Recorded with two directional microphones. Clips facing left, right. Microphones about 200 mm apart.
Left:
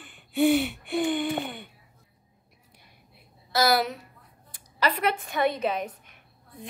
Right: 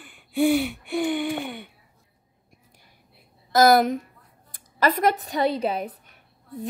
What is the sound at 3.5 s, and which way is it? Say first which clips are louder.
A woman's voice: right 7 dB; 50° right (ahead or behind).